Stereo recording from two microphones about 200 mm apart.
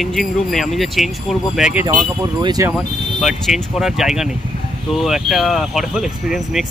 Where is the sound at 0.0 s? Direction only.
Centre (ahead or behind).